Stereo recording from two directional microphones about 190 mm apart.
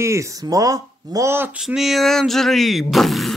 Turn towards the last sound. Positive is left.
turn(degrees=0)  # may be behind; listen again after turning